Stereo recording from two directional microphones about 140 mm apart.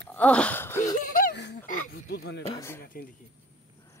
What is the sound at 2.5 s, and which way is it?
Speech, 20° left (ahead or behind).